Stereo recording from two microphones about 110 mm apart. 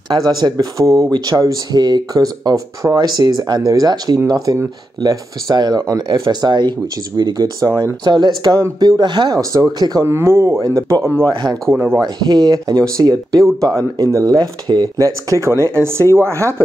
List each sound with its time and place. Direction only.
0.1 s speech: 35° right (ahead or behind)
9.4 s speech: 30° right (ahead or behind)
10.0 s speech: 25° right (ahead or behind)
12.0 s speech: 40° right (ahead or behind); by 16.6 s 25° right (ahead or behind)